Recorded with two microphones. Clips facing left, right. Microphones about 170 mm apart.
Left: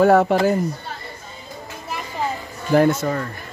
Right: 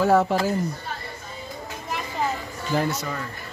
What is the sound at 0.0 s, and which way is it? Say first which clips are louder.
Speech: left 5 dB; 60° left (ahead or behind).